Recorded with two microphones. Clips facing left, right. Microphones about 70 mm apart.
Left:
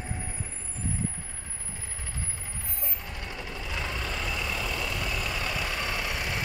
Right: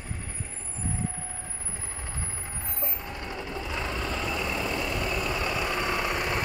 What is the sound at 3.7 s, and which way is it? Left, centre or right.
Vehicle, centre.